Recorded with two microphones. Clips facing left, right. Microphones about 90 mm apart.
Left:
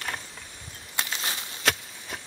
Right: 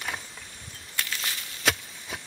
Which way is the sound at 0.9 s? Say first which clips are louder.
Left 2 dB; 25° left (ahead or behind).